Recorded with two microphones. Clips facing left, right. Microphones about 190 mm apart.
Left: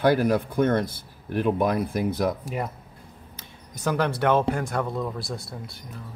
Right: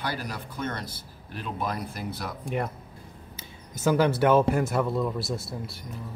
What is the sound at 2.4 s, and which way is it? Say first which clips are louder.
Speech: right 1 dB; centre (ahead or behind).